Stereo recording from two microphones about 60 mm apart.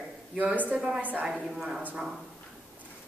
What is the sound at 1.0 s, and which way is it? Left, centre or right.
Speech, right.